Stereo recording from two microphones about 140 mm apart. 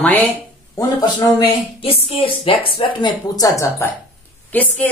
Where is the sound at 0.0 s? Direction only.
10° left (ahead or behind).